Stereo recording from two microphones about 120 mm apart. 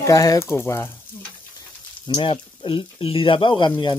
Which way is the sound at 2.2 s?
45° left (ahead or behind).